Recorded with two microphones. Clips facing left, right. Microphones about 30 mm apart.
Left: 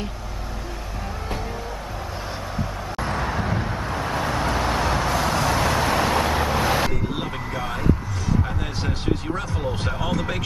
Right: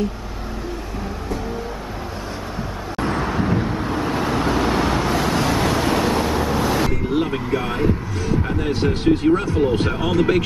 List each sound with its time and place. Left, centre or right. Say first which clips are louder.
3.0 s vehicle: right 4 dB; centre
6.1 s vehicle: right 1 dB; centre
7.2 s music: right 7 dB; right
8.8 s speech: right 9 dB; right
9.3 s speech: right 9 dB; centre
9.9 s speech: right 6 dB; right